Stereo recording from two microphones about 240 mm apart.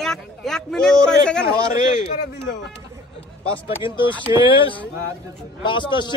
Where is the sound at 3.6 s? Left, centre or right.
Left.